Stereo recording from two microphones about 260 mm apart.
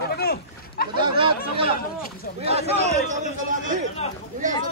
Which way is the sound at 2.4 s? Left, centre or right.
Right.